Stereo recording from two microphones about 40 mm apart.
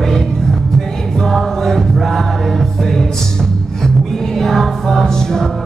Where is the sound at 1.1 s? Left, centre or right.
Centre.